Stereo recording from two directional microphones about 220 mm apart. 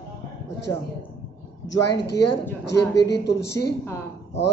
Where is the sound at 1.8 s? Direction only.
50° left (ahead or behind).